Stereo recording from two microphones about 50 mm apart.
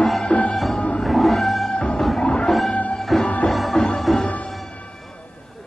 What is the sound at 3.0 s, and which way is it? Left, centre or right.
Music, centre.